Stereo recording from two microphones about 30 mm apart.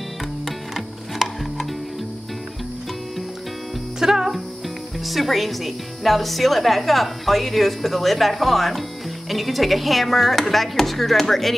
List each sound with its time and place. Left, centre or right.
0.5 s music: centre
4.0 s music: centre
5.0 s a woman's voice: centre